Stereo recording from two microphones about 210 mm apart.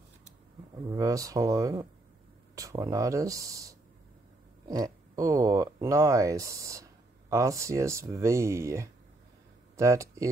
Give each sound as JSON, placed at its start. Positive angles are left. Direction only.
{"t": 0.8, "sound": "speech", "side_deg": -15}